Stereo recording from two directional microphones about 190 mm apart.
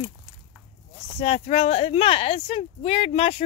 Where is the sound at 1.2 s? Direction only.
30° left (ahead or behind).